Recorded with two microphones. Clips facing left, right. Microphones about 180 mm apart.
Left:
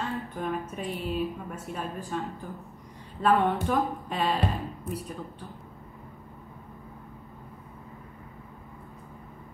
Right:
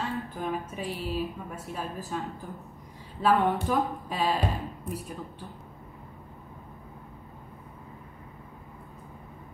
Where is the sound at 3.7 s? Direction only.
5° right (ahead or behind).